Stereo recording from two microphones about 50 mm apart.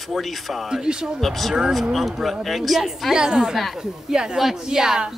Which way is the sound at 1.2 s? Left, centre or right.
Centre.